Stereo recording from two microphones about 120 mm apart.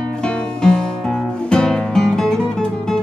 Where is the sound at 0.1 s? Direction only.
5° left (ahead or behind).